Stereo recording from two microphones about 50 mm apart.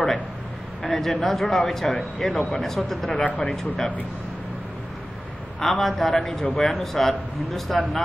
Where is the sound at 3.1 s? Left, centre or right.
Left.